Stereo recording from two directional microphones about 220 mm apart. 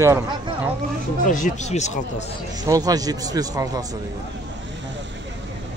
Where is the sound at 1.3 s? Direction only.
35° left (ahead or behind).